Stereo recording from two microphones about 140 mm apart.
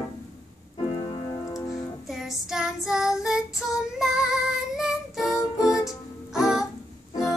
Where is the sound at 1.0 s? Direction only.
35° left (ahead or behind).